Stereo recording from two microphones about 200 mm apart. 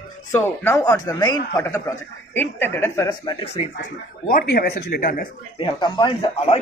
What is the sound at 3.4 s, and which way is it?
Speech, 30° left (ahead or behind).